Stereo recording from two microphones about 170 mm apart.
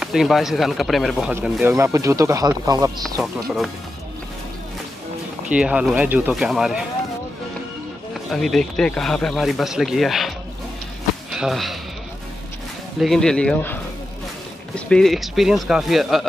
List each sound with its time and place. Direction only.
0.0 s speech: centre (ahead or behind)
1.3 s speech: 15° right (ahead or behind)
5.5 s speech: 5° right (ahead or behind)
8.3 s speech: centre (ahead or behind)
11.3 s speech: centre (ahead or behind)
13.0 s speech: 5° left (ahead or behind)
14.9 s speech: centre (ahead or behind)